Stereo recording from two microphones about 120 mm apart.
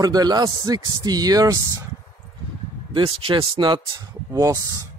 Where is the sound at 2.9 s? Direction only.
45° right (ahead or behind).